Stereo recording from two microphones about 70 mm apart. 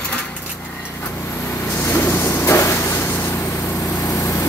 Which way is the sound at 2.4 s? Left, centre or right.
Left.